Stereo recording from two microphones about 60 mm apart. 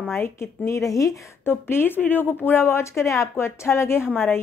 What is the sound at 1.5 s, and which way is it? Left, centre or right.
Speech, left.